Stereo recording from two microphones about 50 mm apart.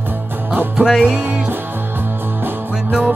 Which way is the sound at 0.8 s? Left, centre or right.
Centre.